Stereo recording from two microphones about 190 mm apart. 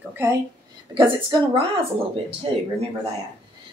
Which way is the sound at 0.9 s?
25° right (ahead or behind).